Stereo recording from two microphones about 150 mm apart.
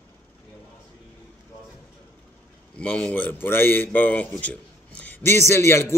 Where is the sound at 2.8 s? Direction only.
10° left (ahead or behind).